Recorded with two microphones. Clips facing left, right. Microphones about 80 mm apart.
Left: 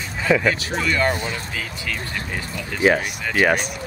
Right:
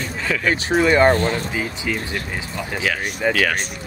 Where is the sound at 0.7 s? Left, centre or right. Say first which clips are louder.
Right 7 dB; right.